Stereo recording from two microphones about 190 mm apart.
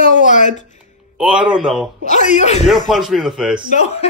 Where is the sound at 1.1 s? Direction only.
5° right (ahead or behind).